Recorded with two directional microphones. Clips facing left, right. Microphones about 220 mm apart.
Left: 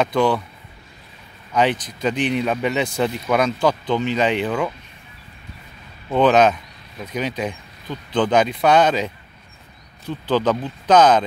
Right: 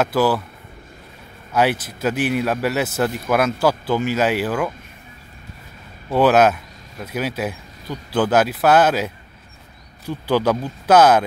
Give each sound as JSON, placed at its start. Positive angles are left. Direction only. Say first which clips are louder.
{"t": 0.0, "sound": "a man's voice", "louder": "even", "side_deg": -5}
{"t": 1.5, "sound": "a man's voice", "louder": "even", "side_deg": -5}
{"t": 6.0, "sound": "speech", "louder": "even", "side_deg": -5}